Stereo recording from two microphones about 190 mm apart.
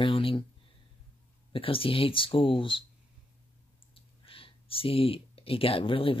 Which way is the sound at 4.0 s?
30° left (ahead or behind).